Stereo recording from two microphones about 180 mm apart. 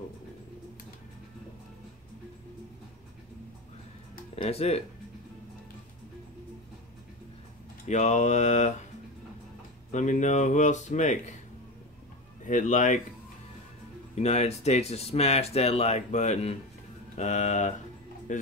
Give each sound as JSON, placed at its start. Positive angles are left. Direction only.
{"t": 4.4, "sound": "speech", "side_deg": 35}
{"t": 7.8, "sound": "speech", "side_deg": 40}
{"t": 9.8, "sound": "speech", "side_deg": 40}
{"t": 12.4, "sound": "speech", "side_deg": 45}
{"t": 14.1, "sound": "speech", "side_deg": 35}